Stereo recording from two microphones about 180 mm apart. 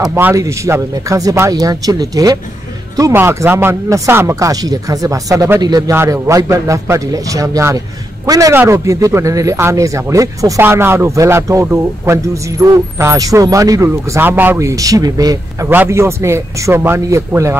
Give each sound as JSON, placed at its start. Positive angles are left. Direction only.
{"t": 0.0, "sound": "a man's voice", "side_deg": -15}